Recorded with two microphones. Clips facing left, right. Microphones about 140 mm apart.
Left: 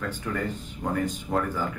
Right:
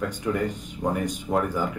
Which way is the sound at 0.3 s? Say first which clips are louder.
Right 5 dB; 15° right (ahead or behind).